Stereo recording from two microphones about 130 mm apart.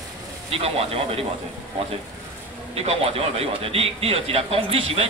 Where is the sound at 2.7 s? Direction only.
50° right (ahead or behind).